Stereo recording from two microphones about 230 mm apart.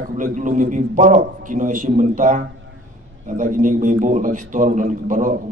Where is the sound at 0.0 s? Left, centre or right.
Right.